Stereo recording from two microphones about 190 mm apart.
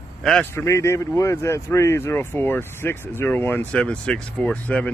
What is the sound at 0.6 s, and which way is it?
Speech, 15° left (ahead or behind).